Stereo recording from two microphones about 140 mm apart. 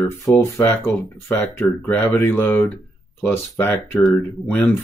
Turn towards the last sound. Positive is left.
turn(degrees=15)  # may be behind; listen again after turning